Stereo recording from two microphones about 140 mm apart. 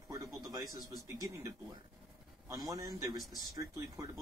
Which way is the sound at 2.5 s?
25° right (ahead or behind).